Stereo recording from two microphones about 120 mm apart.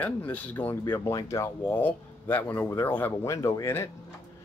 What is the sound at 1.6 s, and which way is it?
Speech, 15° left (ahead or behind).